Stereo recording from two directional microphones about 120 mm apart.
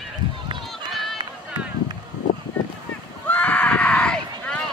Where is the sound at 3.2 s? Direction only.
10° left (ahead or behind).